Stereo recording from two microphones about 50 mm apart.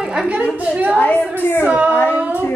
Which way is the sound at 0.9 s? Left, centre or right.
Left.